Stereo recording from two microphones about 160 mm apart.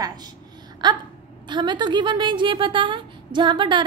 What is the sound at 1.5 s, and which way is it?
A woman's voice, 30° right (ahead or behind).